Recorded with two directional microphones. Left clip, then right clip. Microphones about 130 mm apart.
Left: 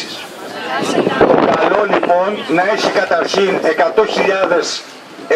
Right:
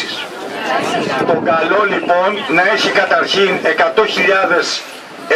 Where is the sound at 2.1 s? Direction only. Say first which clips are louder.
Right 1 dB; 35° right (ahead or behind).